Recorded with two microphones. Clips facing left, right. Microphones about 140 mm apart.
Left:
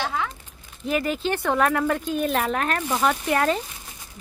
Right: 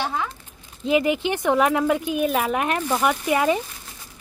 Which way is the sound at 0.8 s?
15° right (ahead or behind).